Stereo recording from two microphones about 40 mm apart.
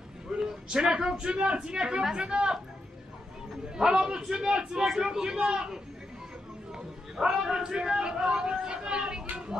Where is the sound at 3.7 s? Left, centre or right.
Centre.